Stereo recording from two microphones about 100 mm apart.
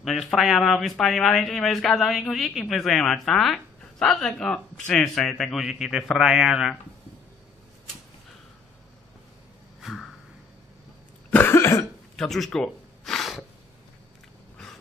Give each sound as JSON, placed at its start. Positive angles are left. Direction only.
{"t": 0.0, "sound": "speech", "side_deg": 0}
{"t": 9.8, "sound": "a sound", "side_deg": 0}
{"t": 11.2, "sound": "cough", "side_deg": 20}
{"t": 12.2, "sound": "speech", "side_deg": 5}
{"t": 12.4, "sound": "gasp", "side_deg": 5}